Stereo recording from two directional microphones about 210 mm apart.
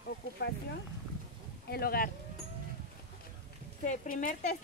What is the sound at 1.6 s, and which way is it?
Speech, 45° left (ahead or behind).